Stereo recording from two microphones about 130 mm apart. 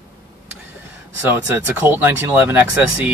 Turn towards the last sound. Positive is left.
turn(degrees=-15)  # may be behind; listen again after turning